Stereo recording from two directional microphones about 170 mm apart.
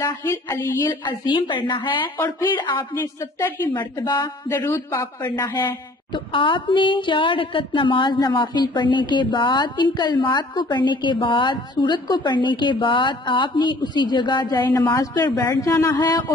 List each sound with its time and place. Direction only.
0.0 s speech: 15° left (ahead or behind)
1.0 s a woman's voice: 25° left (ahead or behind)
2.9 s speech: 15° left (ahead or behind)
5.3 s a woman's voice: 25° left (ahead or behind)